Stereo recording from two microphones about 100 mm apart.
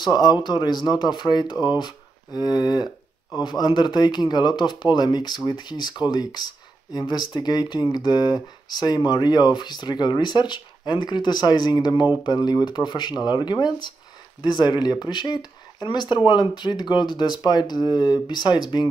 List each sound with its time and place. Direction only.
0.0 s a man's voice: 45° left (ahead or behind)